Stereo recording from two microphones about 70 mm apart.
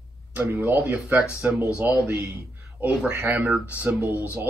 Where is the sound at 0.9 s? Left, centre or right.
Centre.